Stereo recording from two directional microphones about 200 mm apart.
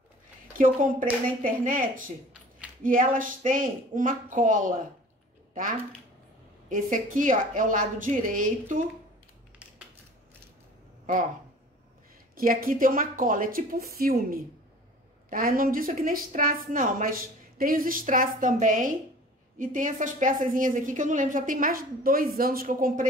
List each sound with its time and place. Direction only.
0.5 s a woman's voice: 40° right (ahead or behind)
6.7 s a woman's voice: 40° right (ahead or behind)
12.4 s a woman's voice: 45° right (ahead or behind)